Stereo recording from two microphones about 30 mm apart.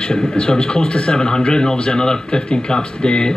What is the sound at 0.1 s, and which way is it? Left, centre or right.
Speech, left.